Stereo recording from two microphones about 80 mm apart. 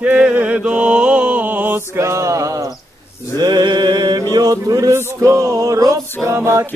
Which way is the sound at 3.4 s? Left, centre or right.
Right.